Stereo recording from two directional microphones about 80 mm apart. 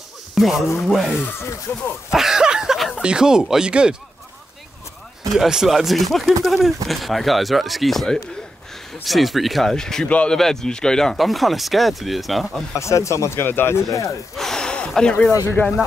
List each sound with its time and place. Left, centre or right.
0.3 s speech: centre
2.0 s a sound: centre
5.3 s speech: centre
10.0 s speech: centre
10.3 s speech: centre
12.7 s speech: left
14.3 s a sound: centre
15.6 s speech: left